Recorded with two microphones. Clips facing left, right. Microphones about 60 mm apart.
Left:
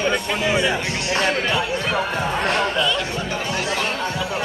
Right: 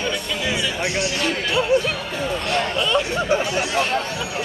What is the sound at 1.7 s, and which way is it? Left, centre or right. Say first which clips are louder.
Basketball bounce: right 7 dB; left.